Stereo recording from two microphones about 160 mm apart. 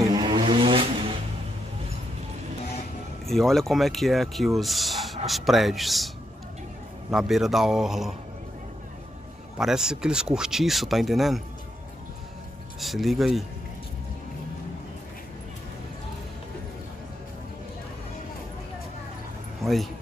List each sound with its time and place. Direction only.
0.0 s vehicle: 25° right (ahead or behind)
3.3 s speech: centre (ahead or behind)
9.6 s speech: 5° right (ahead or behind)
12.8 s speech: centre (ahead or behind)
19.6 s speech: centre (ahead or behind)